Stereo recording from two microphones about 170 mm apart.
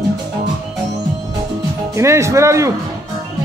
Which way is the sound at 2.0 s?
15° right (ahead or behind).